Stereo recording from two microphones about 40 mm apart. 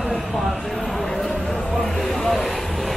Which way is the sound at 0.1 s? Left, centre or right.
Centre.